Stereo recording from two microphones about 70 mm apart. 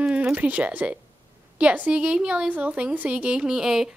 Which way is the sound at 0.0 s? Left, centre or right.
Centre.